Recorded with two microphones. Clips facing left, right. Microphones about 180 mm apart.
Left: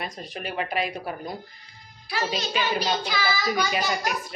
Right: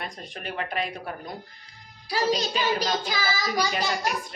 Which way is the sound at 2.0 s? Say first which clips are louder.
Right 4 dB; 35° right (ahead or behind).